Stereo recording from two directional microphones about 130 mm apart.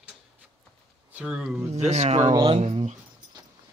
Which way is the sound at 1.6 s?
60° right (ahead or behind).